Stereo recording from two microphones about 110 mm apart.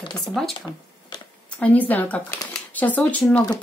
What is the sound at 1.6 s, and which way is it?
Speech, 15° left (ahead or behind).